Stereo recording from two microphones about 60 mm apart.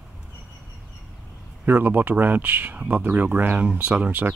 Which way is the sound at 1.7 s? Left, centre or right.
Right.